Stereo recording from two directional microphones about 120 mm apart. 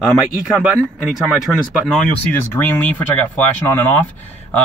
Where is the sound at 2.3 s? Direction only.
15° left (ahead or behind).